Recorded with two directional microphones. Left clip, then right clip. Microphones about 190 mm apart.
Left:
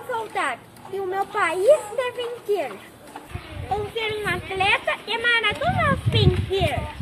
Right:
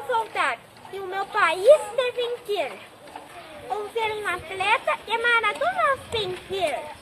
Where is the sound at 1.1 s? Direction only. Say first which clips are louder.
Right 1 dB; centre (ahead or behind).